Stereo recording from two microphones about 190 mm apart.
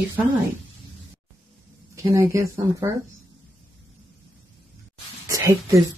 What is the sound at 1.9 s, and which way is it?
Speech, 15° right (ahead or behind).